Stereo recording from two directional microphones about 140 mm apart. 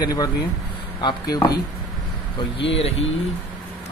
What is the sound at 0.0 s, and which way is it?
Speech, 25° left (ahead or behind).